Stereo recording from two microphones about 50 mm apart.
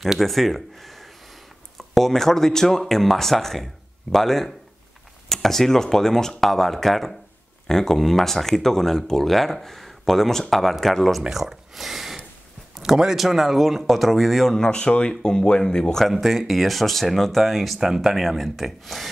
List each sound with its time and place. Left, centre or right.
0.0 s speech: centre
14.7 s speech: left
16.1 s speech: centre